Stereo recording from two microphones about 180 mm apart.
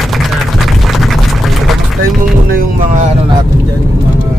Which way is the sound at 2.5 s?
50° right (ahead or behind).